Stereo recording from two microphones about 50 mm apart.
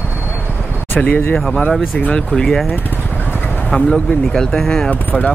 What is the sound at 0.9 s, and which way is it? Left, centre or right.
Speech, left.